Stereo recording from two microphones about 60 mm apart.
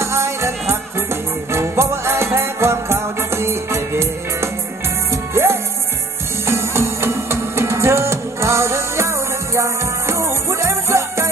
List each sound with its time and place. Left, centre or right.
0.0 s music: right